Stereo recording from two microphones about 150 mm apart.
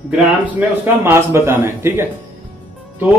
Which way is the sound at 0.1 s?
10° right (ahead or behind).